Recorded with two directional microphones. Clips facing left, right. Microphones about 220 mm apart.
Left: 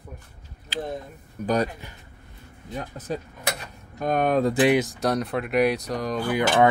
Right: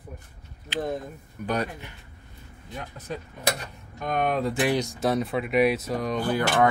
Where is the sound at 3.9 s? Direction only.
40° left (ahead or behind).